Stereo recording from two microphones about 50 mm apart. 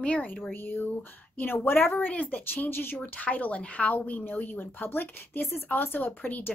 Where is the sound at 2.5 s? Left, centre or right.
Left.